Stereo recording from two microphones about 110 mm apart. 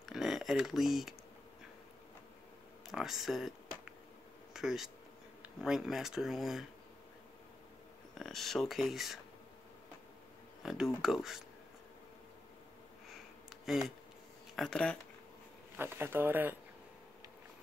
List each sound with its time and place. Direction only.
0.0 s a sound: centre (ahead or behind)
2.9 s speech: 5° right (ahead or behind)
8.1 s speech: 5° left (ahead or behind)
10.6 s speech: 5° right (ahead or behind)
13.7 s speech: centre (ahead or behind)
15.7 s speech: 20° right (ahead or behind)